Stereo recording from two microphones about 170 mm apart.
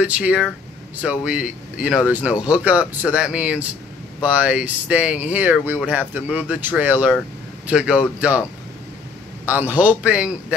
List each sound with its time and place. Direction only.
0.0 s speech: 10° right (ahead or behind)
9.5 s speech: 10° right (ahead or behind)